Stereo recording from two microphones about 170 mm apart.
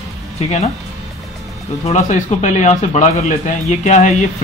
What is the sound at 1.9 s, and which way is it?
Speech, 45° left (ahead or behind).